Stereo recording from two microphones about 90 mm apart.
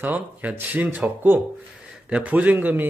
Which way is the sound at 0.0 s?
20° right (ahead or behind).